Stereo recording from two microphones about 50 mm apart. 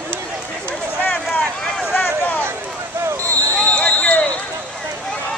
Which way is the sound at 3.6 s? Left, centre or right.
Left.